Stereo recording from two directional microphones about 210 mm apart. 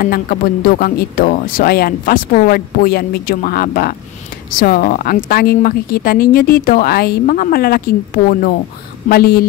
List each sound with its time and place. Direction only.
0.0 s speech: 45° left (ahead or behind)